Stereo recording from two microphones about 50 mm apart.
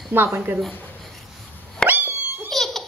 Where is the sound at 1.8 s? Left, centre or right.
Right.